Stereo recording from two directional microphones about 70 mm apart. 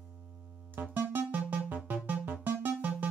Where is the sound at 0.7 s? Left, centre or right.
Right.